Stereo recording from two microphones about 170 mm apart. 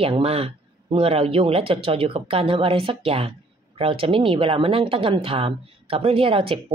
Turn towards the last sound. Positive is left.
turn(degrees=-30)  # may be behind; listen again after turning